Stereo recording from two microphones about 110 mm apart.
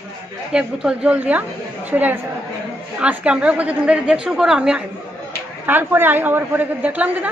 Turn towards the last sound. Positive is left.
turn(degrees=-15)  # may be behind; listen again after turning